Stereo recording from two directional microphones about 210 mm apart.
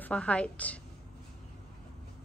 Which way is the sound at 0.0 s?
5° left (ahead or behind).